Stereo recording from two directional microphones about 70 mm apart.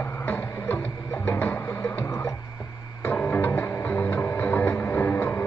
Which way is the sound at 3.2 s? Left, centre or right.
Left.